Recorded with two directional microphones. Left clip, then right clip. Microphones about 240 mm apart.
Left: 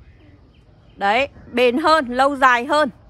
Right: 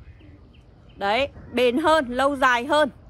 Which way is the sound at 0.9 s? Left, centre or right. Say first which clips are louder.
Left 5 dB; left.